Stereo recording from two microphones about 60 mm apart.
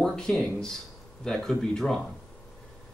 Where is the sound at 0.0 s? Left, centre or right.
Centre.